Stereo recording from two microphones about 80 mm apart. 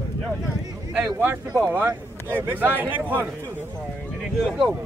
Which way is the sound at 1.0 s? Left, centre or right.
Right.